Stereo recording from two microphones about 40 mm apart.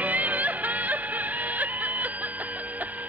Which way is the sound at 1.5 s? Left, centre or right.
Right.